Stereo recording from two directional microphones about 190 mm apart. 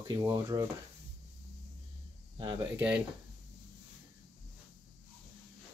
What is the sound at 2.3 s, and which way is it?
Speech, 25° right (ahead or behind).